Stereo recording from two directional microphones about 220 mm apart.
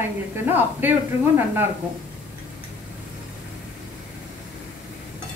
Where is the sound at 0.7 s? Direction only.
10° right (ahead or behind).